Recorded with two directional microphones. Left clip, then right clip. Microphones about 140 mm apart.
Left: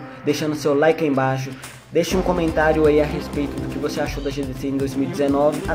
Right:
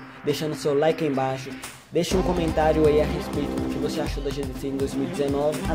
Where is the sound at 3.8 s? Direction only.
30° right (ahead or behind).